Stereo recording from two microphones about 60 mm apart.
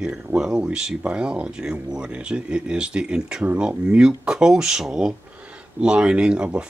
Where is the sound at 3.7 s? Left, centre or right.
Centre.